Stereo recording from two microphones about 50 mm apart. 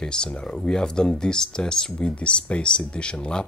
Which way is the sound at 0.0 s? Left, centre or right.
Centre.